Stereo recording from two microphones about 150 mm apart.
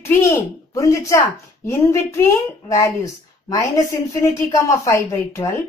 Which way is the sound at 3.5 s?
20° left (ahead or behind).